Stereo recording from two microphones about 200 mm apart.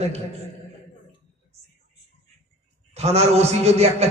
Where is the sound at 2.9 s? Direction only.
30° right (ahead or behind).